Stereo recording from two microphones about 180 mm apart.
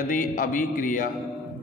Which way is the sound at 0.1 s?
50° left (ahead or behind).